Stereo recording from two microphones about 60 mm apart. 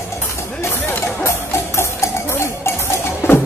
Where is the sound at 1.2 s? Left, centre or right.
Left.